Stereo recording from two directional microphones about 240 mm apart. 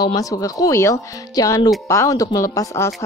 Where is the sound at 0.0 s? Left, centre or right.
Centre.